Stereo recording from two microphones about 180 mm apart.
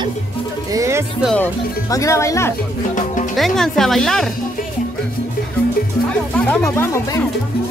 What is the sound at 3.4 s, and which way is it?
Speech, centre (ahead or behind).